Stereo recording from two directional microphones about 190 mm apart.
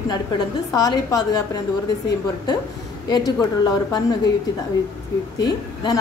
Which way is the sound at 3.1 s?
20° left (ahead or behind).